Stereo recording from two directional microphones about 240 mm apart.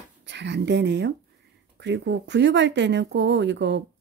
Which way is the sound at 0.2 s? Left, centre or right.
Right.